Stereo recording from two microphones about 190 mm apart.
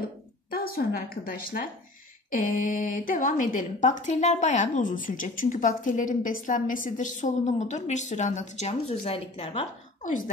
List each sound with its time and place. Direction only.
0.5 s a woman's voice: 50° left (ahead or behind); by 9.7 s 30° left (ahead or behind)
10.0 s a woman's voice: 45° left (ahead or behind)